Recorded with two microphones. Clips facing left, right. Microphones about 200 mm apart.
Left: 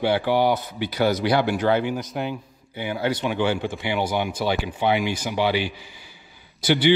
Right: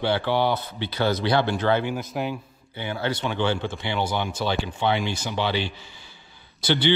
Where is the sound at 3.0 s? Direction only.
10° left (ahead or behind).